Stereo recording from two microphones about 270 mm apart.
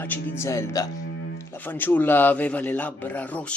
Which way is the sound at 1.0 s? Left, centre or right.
Left.